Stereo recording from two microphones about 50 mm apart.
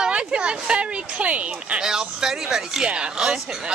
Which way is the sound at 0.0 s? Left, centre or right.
Centre.